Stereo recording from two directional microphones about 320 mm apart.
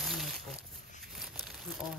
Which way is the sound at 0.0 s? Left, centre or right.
Centre.